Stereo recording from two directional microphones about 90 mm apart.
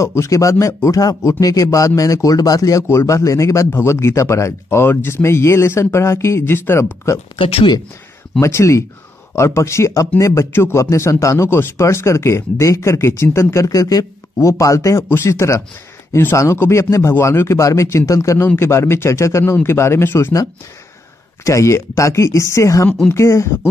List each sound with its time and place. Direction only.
0.0 s speech: 35° left (ahead or behind)
7.3 s speech: 85° left
8.4 s speech: 30° left (ahead or behind)
21.5 s speech: 35° left (ahead or behind)